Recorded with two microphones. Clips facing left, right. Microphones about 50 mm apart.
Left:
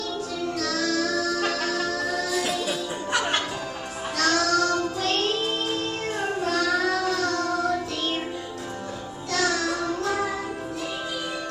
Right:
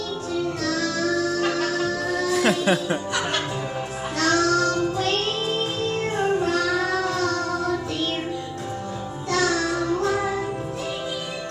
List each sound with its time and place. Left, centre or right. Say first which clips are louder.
0.7 s music: even; right
2.2 s music: right 6 dB; right
4.2 s music: right 2 dB; right
6.1 s child singing: right 3 dB; right
9.3 s music: right 2 dB; right